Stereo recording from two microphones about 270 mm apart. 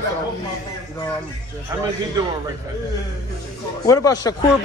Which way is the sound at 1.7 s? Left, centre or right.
Centre.